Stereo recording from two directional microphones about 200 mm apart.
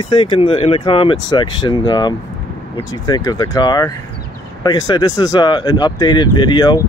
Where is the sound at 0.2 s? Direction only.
25° left (ahead or behind).